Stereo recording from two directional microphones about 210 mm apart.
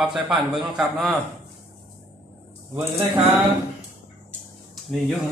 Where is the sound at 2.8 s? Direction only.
30° right (ahead or behind).